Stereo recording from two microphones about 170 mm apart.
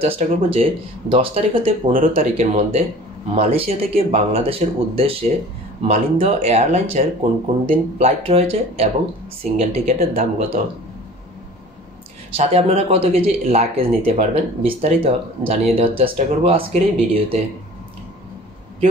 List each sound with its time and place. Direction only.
0.0 s speech: 35° right (ahead or behind)
1.9 s speech: 55° right (ahead or behind)
2.3 s speech: 40° right (ahead or behind)
12.4 s speech: 35° right (ahead or behind)